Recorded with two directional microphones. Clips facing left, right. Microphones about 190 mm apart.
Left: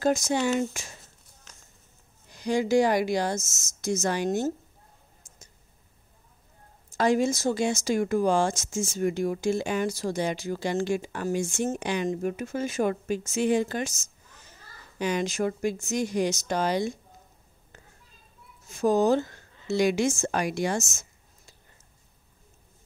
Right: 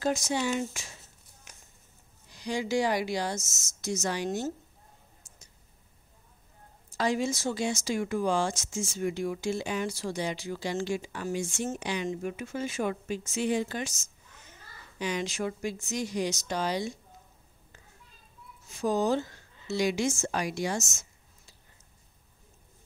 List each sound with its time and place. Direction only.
0.0 s speech: 45° left (ahead or behind)
1.5 s a sound: 15° right (ahead or behind)
2.2 s speech: 50° left (ahead or behind)
7.0 s speech: 50° left (ahead or behind)
18.7 s a woman's voice: 45° left (ahead or behind)